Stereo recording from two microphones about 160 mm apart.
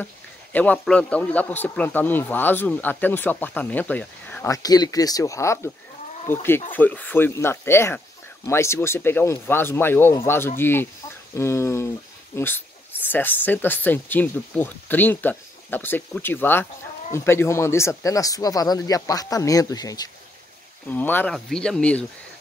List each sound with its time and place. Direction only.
0.0 s speech: 10° left (ahead or behind)
4.5 s speech: 25° left (ahead or behind)
20.9 s speech: 10° left (ahead or behind)